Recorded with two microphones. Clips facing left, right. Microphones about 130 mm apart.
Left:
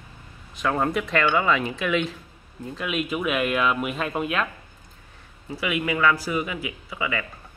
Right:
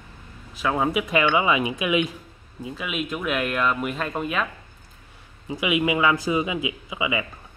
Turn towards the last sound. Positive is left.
turn(degrees=-15)  # may be behind; listen again after turning